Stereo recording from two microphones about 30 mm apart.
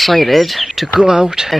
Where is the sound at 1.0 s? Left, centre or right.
Right.